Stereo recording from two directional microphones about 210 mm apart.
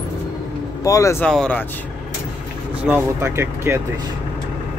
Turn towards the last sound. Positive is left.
turn(degrees=-10)  # may be behind; listen again after turning